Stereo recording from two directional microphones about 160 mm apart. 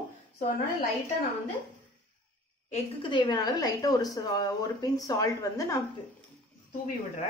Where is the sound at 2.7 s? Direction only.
30° left (ahead or behind).